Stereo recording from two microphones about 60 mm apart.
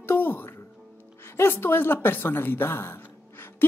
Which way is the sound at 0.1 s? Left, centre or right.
Left.